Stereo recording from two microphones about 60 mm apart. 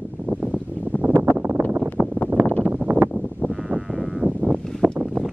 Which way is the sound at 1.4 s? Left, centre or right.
Right.